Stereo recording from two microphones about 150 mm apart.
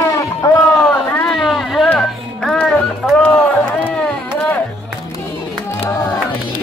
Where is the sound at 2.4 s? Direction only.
5° left (ahead or behind).